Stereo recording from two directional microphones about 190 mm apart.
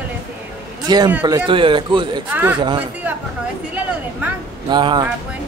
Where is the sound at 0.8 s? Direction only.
20° right (ahead or behind).